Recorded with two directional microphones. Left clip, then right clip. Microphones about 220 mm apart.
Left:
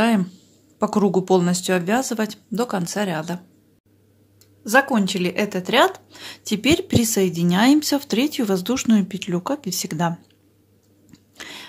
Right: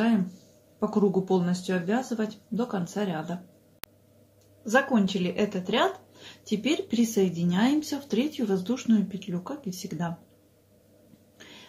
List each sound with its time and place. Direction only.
0.7 s speech: 50° left (ahead or behind)
4.6 s speech: 50° left (ahead or behind)
11.3 s a sound: 50° left (ahead or behind)